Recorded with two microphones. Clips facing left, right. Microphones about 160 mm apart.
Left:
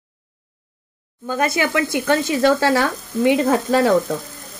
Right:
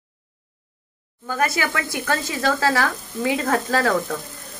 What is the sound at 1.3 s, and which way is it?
Speech, 20° left (ahead or behind).